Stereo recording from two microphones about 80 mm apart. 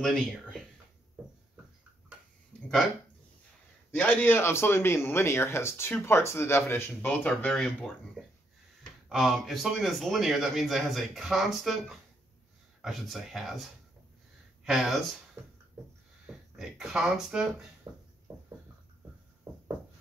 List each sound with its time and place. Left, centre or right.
0.0 s speech: centre
3.9 s a man's voice: centre
4.4 s speech: left
9.1 s a man's voice: centre
15.4 s a sound: right
16.3 s speech: centre
17.9 s a sound: right